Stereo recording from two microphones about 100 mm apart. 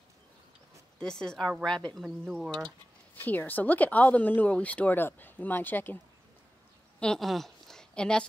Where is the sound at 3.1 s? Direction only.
20° left (ahead or behind).